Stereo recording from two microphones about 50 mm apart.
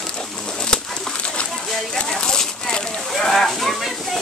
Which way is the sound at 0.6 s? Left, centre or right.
Centre.